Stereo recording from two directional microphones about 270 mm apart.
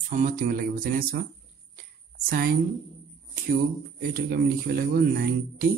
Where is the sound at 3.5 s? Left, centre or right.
Right.